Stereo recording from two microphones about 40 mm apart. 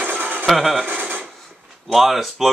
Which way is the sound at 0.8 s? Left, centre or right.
Right.